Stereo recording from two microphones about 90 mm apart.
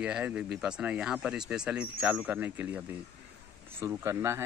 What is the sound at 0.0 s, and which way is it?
Speech, 15° right (ahead or behind).